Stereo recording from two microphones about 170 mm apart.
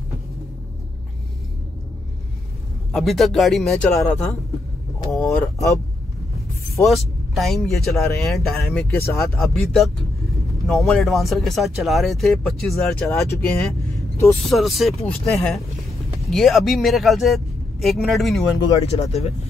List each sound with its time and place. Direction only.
2.9 s speech: centre (ahead or behind)
5.3 s speech: 20° left (ahead or behind)
6.8 s speech: centre (ahead or behind)
8.9 s speech: 15° left (ahead or behind)
9.2 s speech: centre (ahead or behind)
18.8 s speech: 35° left (ahead or behind)